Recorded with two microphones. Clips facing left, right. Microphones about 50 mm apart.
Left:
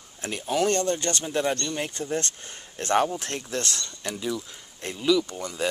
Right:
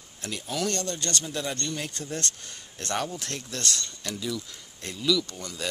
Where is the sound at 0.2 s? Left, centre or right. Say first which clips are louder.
Left 6 dB; left.